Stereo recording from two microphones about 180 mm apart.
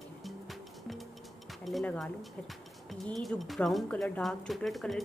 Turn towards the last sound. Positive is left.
turn(degrees=0)  # may be behind; listen again after turning